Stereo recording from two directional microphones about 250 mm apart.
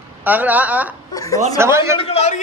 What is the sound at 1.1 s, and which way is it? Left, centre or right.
Speech, centre.